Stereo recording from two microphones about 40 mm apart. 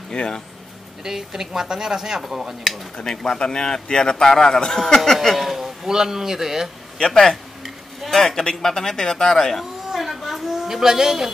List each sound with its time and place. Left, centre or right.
0.1 s speech: centre
1.0 s speech: centre
2.2 s dishes: centre
3.0 s a man's voice: centre
5.9 s speech: centre
7.0 s a man's voice: centre
7.6 s a sound: centre
8.2 s a man's voice: centre